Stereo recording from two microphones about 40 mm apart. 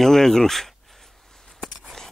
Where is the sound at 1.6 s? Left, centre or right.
Centre.